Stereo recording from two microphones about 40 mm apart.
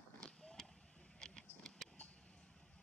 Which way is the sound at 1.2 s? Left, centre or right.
Centre.